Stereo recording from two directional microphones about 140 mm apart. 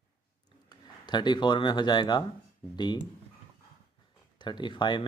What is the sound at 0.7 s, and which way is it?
Speech, 30° left (ahead or behind).